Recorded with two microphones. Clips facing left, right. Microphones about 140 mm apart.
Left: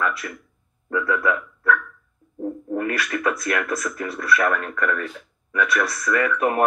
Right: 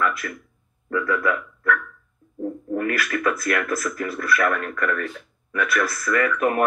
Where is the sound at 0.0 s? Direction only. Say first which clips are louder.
Right 1 dB; 25° left (ahead or behind).